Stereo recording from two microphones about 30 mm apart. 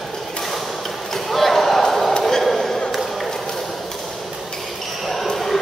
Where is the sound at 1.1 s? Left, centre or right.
Centre.